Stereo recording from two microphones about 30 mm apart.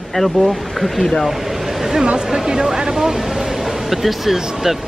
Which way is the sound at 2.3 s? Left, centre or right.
Centre.